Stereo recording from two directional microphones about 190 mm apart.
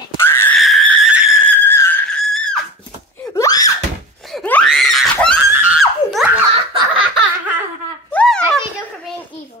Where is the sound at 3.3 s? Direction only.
20° left (ahead or behind).